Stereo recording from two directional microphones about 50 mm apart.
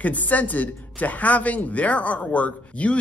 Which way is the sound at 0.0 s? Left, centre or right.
Left.